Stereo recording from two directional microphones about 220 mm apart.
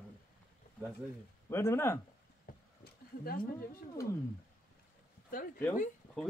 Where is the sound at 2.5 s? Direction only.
40° left (ahead or behind).